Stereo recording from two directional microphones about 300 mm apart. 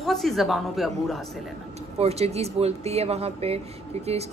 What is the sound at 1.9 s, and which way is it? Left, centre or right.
A woman's voice, right.